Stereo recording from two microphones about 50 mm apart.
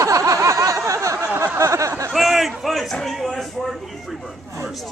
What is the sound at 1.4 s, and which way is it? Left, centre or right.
Speech, right.